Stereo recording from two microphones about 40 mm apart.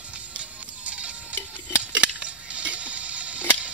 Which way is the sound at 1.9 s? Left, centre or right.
Right.